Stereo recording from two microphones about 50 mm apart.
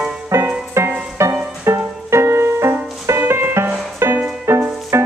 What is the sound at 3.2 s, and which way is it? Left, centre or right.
Music, right.